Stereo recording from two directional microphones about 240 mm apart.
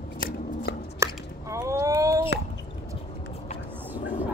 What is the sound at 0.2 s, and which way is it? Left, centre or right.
Shuffling cards, left.